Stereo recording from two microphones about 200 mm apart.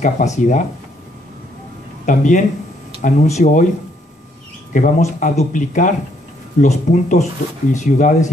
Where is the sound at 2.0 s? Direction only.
40° left (ahead or behind).